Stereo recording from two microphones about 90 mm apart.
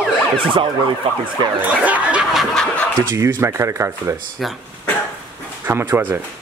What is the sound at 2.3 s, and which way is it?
Snicker, 5° left (ahead or behind).